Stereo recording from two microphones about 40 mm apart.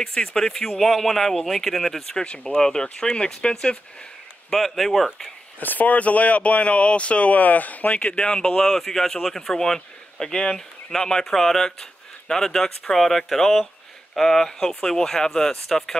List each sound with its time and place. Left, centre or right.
0.0 s speech: left
0.7 s speech: centre
2.2 s speech: left
2.5 s speech: centre
4.5 s speech: centre
5.6 s speech: left
8.1 s speech: left